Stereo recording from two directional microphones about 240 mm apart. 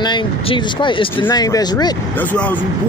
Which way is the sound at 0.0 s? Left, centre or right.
Centre.